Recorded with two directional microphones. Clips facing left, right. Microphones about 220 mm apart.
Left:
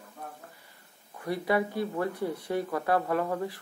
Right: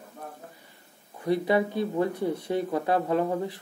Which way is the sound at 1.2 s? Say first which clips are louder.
Right 4 dB; 20° right (ahead or behind).